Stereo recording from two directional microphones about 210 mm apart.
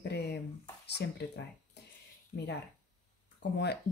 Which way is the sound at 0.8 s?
55° left (ahead or behind).